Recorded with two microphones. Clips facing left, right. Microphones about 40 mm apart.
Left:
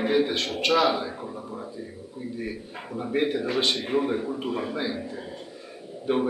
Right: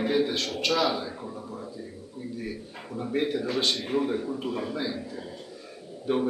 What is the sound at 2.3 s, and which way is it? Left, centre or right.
A man's voice, centre.